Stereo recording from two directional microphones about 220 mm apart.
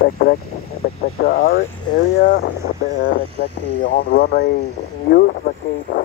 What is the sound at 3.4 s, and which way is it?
Speech, 50° left (ahead or behind).